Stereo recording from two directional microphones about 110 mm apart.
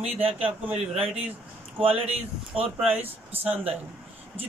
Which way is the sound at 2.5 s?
15° right (ahead or behind).